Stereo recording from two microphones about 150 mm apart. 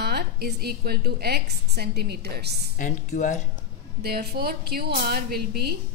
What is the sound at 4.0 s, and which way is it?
A woman's voice, 90° right.